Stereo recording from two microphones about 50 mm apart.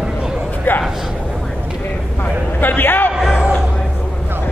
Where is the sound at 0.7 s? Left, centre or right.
Left.